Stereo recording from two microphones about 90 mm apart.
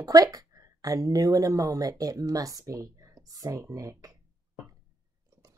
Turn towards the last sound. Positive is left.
turn(degrees=-40)  # may be behind; listen again after turning